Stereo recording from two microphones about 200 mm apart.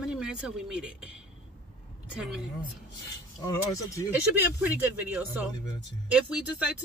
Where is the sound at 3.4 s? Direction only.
15° left (ahead or behind).